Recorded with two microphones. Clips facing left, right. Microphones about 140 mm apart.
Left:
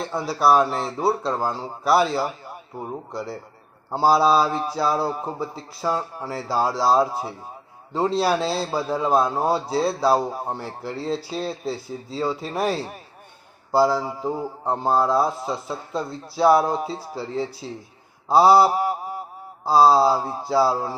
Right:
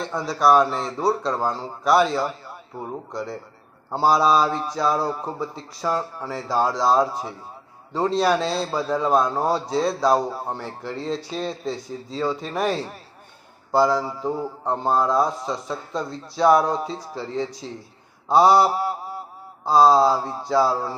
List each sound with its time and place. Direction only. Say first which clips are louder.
0.0 s speech: even; 5° left (ahead or behind)